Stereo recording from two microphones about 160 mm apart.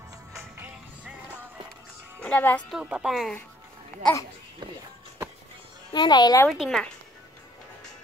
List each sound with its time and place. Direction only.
0.4 s music: 10° right (ahead or behind)
2.2 s speech: 10° left (ahead or behind)
2.7 s a woman's voice: 5° right (ahead or behind)
5.9 s speech: 25° left (ahead or behind)
6.5 s a woman's voice: centre (ahead or behind)